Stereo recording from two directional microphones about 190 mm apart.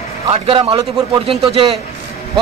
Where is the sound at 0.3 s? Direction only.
30° right (ahead or behind).